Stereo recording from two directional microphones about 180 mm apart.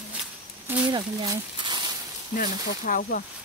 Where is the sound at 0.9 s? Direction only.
20° right (ahead or behind).